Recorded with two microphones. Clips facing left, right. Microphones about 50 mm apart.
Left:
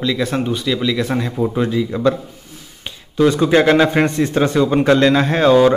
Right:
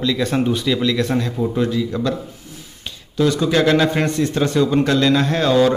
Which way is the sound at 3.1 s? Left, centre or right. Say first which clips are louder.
Left 4 dB; left.